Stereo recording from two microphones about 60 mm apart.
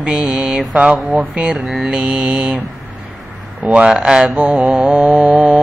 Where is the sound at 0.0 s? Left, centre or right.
Centre.